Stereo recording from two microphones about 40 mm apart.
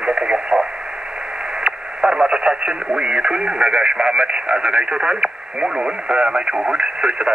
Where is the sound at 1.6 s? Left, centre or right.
Right.